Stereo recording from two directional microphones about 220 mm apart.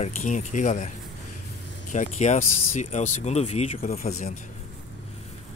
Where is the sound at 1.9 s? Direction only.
30° left (ahead or behind).